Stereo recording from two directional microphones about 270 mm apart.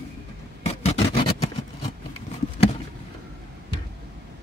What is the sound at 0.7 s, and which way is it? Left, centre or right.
Vehicle, left.